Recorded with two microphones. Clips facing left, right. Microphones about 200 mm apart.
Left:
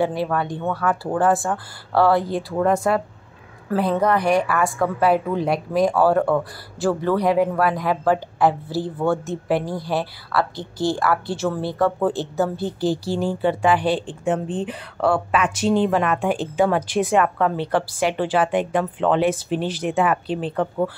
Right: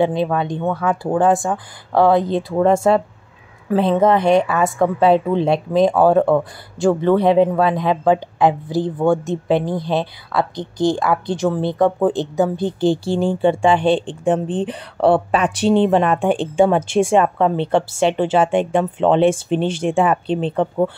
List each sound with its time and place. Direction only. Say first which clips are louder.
0.0 s a woman's voice: right 4 dB; 20° right (ahead or behind)